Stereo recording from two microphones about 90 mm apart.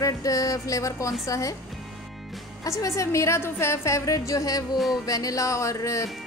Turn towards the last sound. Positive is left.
turn(degrees=35)  # may be behind; listen again after turning